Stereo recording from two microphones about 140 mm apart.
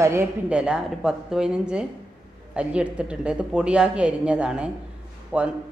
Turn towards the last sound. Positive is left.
turn(degrees=-10)  # may be behind; listen again after turning